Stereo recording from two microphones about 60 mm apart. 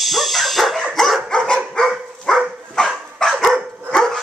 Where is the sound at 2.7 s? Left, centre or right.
Centre.